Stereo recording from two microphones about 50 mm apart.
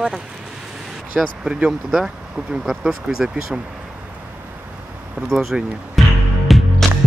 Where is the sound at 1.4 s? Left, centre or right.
Centre.